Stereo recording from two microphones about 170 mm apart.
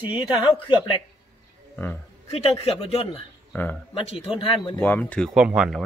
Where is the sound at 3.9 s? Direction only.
30° left (ahead or behind).